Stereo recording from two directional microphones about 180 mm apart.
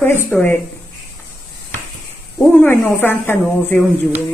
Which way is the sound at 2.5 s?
10° left (ahead or behind).